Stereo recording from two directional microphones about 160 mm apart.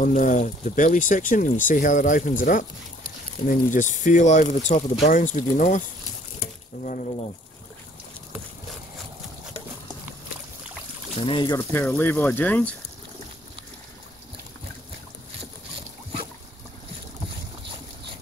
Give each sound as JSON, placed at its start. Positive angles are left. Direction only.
{"t": 0.0, "sound": "speech", "side_deg": 55}
{"t": 6.8, "sound": "speech", "side_deg": 55}
{"t": 11.1, "sound": "speech", "side_deg": 30}
{"t": 11.5, "sound": "speech", "side_deg": 15}